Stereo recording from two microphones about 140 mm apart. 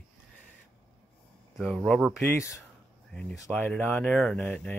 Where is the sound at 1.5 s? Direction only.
Centre (ahead or behind).